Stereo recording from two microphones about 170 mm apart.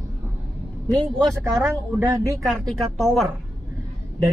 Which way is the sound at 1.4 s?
15° right (ahead or behind).